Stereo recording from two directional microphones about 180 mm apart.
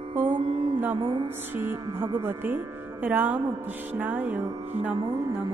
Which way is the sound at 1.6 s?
15° right (ahead or behind).